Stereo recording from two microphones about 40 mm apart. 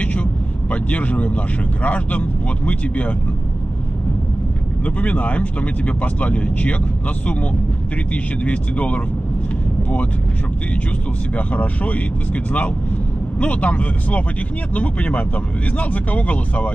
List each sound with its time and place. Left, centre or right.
0.0 s speech: left
4.8 s speech: left
8.1 s speech: left
11.3 s speech: left